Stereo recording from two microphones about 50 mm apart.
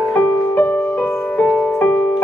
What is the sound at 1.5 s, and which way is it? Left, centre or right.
Music, left.